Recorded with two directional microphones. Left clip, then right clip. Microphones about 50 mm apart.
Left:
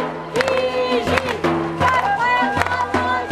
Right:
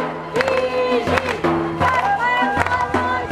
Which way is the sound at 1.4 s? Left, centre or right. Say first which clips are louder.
Even; left.